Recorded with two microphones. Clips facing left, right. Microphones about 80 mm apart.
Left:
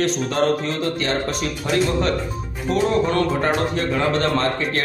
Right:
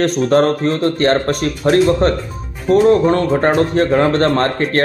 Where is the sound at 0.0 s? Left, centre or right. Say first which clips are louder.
Right 7 dB; right.